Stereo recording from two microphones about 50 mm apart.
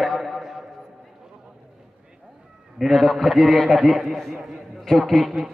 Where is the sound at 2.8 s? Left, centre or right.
Centre.